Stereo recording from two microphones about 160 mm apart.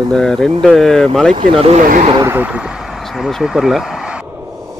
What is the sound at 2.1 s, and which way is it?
Speech, 15° right (ahead or behind).